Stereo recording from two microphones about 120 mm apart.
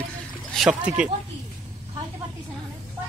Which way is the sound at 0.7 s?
10° right (ahead or behind).